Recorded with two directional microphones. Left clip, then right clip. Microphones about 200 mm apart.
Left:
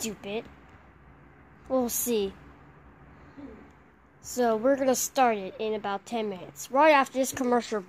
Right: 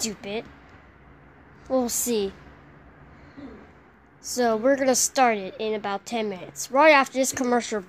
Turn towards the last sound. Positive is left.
turn(degrees=0)  # may be behind; listen again after turning